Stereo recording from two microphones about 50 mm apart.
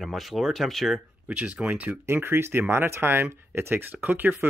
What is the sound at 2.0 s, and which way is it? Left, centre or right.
Speech, right.